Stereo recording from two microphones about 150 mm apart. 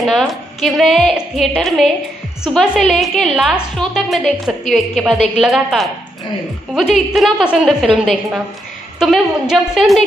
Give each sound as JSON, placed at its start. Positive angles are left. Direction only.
{"t": 0.0, "sound": "a woman's voice", "side_deg": 0}